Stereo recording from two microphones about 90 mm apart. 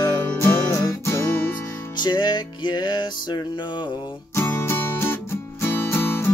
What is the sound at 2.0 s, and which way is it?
Music, 55° left (ahead or behind).